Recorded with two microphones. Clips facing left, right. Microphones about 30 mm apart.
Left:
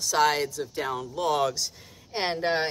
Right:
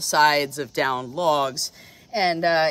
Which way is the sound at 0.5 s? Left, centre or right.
Right.